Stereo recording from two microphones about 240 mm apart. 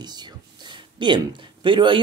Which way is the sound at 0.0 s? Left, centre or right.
Centre.